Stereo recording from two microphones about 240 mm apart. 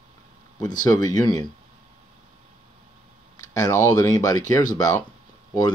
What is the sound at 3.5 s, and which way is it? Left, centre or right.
Speech, centre.